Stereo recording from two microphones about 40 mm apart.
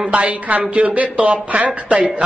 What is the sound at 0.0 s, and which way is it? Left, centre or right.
A woman's voice, right.